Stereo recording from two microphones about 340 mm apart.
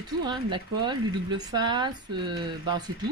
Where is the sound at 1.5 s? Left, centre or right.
Centre.